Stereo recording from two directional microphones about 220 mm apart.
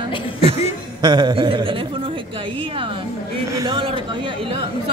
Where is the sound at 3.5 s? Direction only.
20° right (ahead or behind).